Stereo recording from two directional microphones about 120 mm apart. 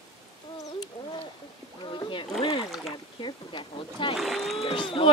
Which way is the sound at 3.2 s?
40° left (ahead or behind).